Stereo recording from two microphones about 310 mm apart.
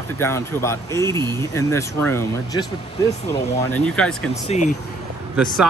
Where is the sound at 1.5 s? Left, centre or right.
Centre.